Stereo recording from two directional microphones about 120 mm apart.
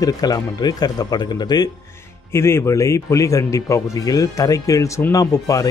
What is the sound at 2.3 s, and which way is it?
Speech, 20° left (ahead or behind).